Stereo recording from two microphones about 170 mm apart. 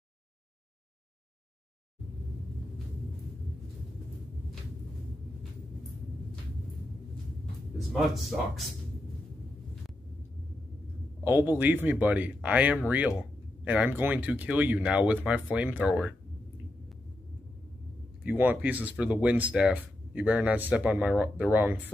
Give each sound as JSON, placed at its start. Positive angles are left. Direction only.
{"t": 7.7, "sound": "speech", "side_deg": 0}
{"t": 11.2, "sound": "speech", "side_deg": -10}
{"t": 18.2, "sound": "speech", "side_deg": -10}